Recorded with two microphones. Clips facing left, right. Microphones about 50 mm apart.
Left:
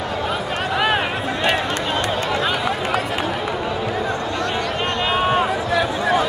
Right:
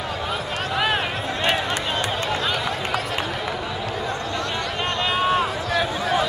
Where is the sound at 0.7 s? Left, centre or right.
Centre.